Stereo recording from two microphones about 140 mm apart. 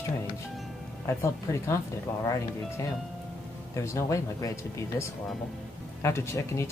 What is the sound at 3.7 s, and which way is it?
Speech, 20° left (ahead or behind).